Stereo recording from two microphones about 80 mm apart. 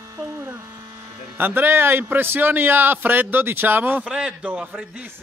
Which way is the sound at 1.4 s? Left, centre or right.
Right.